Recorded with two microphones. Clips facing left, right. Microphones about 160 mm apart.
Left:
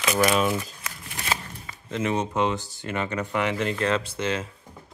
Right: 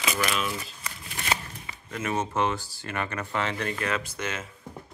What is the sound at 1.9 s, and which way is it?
Speech, 25° left (ahead or behind).